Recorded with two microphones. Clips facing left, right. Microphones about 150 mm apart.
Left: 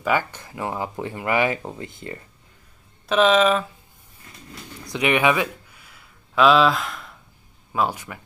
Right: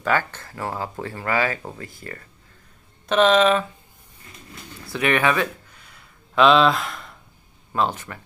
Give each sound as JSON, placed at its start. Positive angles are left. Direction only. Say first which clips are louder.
{"t": 0.0, "sound": "speech", "louder": "even", "side_deg": 10}
{"t": 3.1, "sound": "speech", "louder": "right 1 dB", "side_deg": 0}
{"t": 4.8, "sound": "a sound", "louder": "left 1 dB", "side_deg": 15}
{"t": 7.7, "sound": "speech", "louder": "even", "side_deg": 10}